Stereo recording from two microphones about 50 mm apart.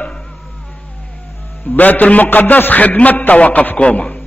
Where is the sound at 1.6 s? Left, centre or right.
Left.